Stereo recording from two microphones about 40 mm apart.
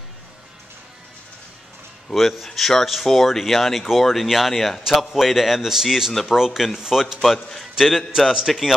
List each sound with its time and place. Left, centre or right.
2.1 s a man's voice: centre